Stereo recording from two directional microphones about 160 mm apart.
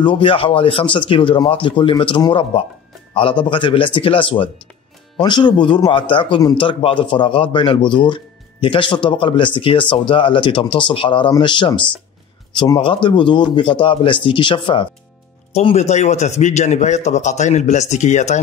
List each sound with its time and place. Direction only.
0.0 s a man's voice: 30° left (ahead or behind); by 18.4 s 50° left (ahead or behind)